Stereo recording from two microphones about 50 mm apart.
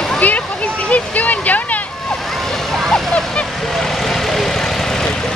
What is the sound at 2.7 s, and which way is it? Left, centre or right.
Vehicle, centre.